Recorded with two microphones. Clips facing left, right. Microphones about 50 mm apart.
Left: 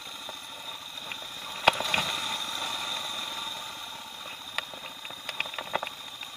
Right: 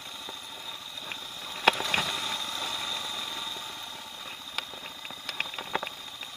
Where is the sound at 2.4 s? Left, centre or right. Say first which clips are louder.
Even; left.